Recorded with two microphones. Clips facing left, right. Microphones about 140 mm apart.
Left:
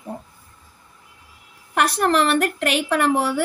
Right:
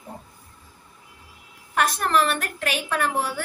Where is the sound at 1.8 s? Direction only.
65° left (ahead or behind).